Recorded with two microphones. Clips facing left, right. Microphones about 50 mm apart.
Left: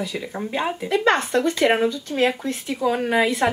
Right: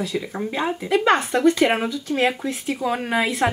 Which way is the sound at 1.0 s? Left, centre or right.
Centre.